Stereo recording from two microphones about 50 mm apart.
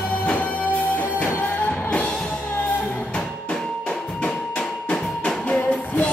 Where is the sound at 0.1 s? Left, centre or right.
Left.